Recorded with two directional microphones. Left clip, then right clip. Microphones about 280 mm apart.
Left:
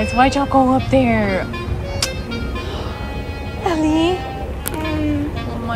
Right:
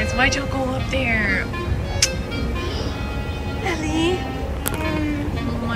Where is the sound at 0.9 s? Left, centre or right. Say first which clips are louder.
Left 2 dB; centre.